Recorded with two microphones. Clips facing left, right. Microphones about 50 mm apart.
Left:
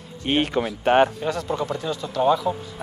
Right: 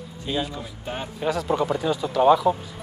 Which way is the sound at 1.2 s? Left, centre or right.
Centre.